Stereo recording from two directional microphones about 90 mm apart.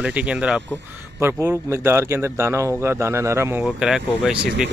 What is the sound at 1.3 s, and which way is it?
A man's voice, 30° right (ahead or behind).